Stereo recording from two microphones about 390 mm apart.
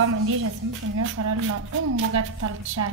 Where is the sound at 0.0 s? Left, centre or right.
Right.